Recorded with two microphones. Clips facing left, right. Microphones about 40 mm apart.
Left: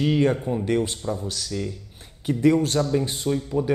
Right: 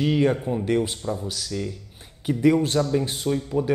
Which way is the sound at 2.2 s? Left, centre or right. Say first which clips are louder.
Even; centre.